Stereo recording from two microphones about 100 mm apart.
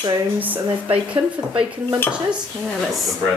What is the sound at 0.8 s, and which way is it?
Speech, 60° right (ahead or behind).